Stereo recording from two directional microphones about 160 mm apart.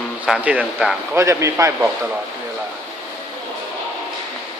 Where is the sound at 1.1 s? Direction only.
20° right (ahead or behind).